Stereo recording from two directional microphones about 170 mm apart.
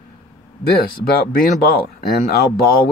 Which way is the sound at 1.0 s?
65° left (ahead or behind).